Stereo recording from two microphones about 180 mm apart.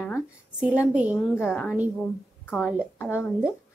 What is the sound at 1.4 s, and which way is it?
Speech, 10° left (ahead or behind).